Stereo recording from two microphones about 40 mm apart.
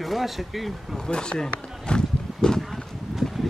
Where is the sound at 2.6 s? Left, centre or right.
Centre.